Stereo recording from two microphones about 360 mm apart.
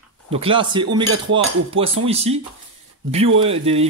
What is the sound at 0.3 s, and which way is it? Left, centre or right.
Speech, centre.